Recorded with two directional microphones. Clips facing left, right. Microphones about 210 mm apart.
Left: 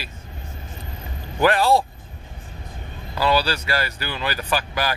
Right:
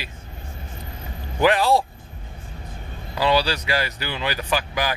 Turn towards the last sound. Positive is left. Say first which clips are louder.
# even
turn(degrees=-15)  # may be behind; listen again after turning